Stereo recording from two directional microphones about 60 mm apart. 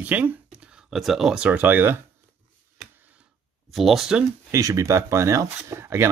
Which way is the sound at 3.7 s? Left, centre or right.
Centre.